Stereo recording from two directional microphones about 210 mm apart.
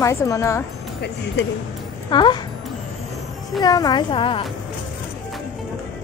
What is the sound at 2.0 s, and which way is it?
Speech, 20° left (ahead or behind).